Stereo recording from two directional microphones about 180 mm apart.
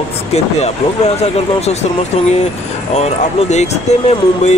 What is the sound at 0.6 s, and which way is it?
Speech, 35° left (ahead or behind).